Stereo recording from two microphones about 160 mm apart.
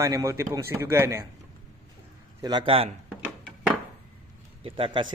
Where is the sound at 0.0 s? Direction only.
20° right (ahead or behind).